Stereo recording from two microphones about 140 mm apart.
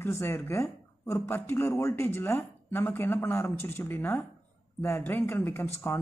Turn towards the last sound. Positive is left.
turn(degrees=15)  # may be behind; listen again after turning